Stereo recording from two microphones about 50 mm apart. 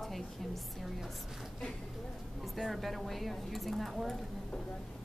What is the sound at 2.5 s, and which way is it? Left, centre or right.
Speech, centre.